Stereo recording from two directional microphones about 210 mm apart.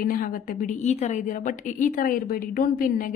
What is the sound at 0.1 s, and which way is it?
A woman's voice, 40° left (ahead or behind).